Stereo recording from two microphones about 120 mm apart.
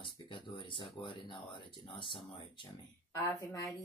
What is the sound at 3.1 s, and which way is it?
Speech, 30° left (ahead or behind).